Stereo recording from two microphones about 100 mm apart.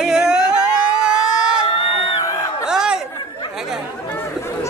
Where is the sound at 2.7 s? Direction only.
5° right (ahead or behind).